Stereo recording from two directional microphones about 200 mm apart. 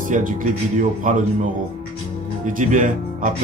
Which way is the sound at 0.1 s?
40° right (ahead or behind).